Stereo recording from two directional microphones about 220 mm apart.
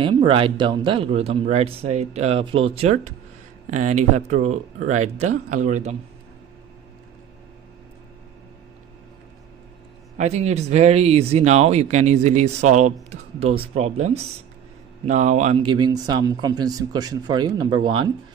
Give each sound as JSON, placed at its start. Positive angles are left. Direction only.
{"t": 0.0, "sound": "speech", "side_deg": -25}
{"t": 10.1, "sound": "speech", "side_deg": -30}